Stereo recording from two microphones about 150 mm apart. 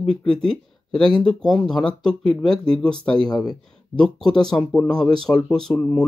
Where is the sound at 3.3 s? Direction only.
30° left (ahead or behind).